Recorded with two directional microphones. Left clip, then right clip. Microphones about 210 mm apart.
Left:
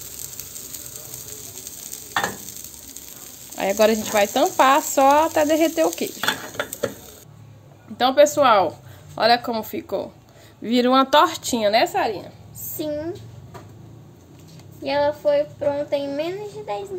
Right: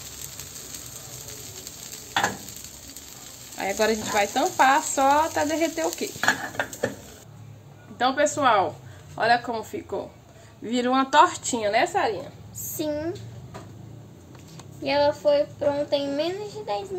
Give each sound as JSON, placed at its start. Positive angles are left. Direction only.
{"t": 3.5, "sound": "speech", "side_deg": 45}
{"t": 8.0, "sound": "speech", "side_deg": 45}
{"t": 12.7, "sound": "a child's voice", "side_deg": 5}
{"t": 14.8, "sound": "a child's voice", "side_deg": 5}